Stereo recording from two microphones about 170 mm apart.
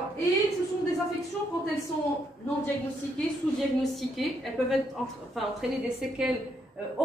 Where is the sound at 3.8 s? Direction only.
Centre (ahead or behind).